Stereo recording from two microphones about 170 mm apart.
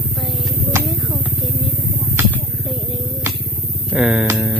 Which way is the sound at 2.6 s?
Centre (ahead or behind).